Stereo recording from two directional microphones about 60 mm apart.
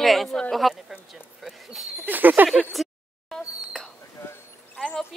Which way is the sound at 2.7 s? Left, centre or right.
Centre.